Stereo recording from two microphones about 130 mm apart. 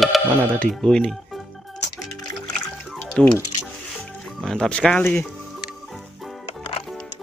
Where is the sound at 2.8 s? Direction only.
5° left (ahead or behind).